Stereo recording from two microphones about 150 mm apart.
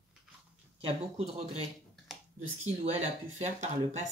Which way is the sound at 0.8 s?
40° right (ahead or behind).